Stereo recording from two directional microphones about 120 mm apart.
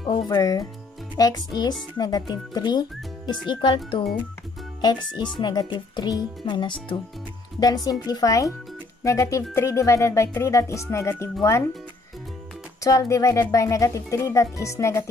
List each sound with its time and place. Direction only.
0.1 s speech: 30° left (ahead or behind)
12.8 s speech: 25° left (ahead or behind)